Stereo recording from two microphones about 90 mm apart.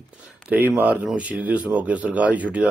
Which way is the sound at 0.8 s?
15° right (ahead or behind).